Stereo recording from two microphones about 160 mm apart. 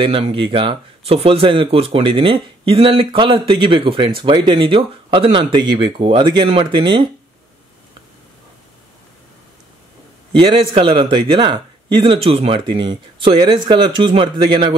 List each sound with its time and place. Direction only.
0.0 s speech: 35° right (ahead or behind)
10.3 s speech: 30° right (ahead or behind)